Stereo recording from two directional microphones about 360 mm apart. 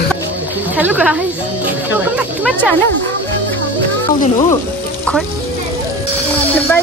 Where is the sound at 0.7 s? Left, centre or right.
Centre.